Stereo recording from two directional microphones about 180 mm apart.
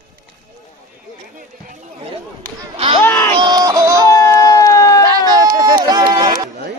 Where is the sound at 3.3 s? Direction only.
25° right (ahead or behind).